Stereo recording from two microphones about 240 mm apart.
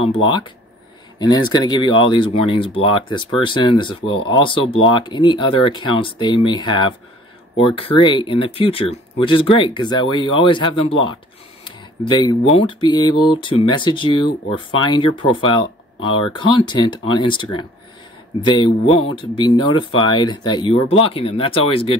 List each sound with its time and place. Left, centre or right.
1.2 s speech: centre